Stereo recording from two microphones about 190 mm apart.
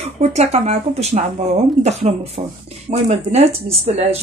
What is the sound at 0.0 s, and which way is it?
Speech, 35° right (ahead or behind).